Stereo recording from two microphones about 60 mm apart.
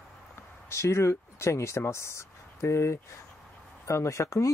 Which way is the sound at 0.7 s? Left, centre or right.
Left.